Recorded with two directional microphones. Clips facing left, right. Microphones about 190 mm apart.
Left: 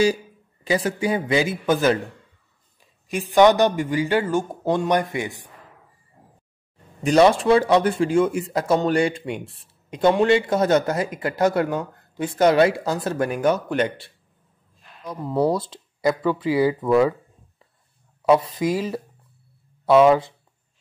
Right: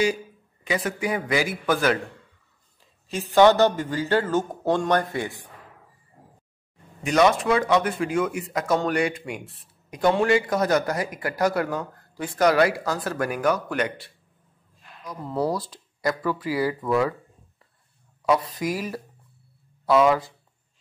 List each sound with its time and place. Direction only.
0.7 s speech: 30° left (ahead or behind)
3.1 s speech: 15° left (ahead or behind)
7.0 s speech: 30° left (ahead or behind)
15.5 s speech: 25° left (ahead or behind)
18.2 s speech: 25° left (ahead or behind)